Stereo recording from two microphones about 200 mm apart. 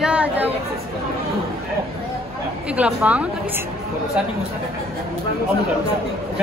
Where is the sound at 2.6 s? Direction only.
5° right (ahead or behind).